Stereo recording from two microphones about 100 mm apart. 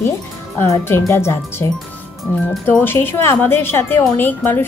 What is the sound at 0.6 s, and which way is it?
Speech, 30° left (ahead or behind).